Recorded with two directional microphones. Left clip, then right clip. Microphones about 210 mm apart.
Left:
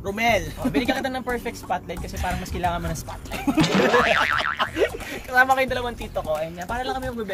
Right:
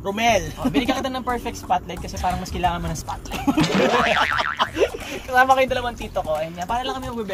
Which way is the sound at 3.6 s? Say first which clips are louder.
Even; centre (ahead or behind).